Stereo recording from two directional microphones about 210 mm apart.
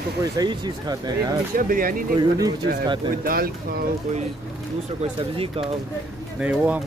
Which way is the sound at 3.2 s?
45° right (ahead or behind).